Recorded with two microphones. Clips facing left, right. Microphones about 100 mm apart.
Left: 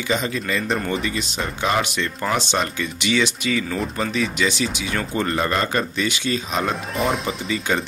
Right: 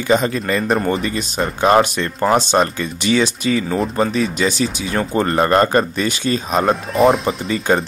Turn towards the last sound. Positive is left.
turn(degrees=-45)  # may be behind; listen again after turning